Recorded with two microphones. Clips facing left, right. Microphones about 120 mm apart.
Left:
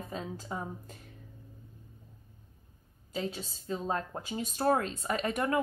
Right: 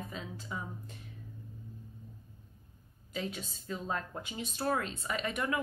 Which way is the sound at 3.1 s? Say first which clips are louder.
Left 3 dB; 30° left (ahead or behind).